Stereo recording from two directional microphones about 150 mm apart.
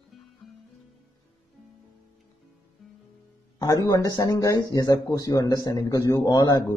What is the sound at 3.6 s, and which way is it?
Speech, 25° left (ahead or behind).